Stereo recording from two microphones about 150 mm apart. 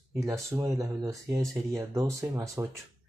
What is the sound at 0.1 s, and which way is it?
Speech, 20° right (ahead or behind).